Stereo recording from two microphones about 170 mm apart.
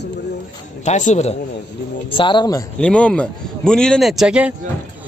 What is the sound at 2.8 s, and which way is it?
A man's voice, 5° left (ahead or behind).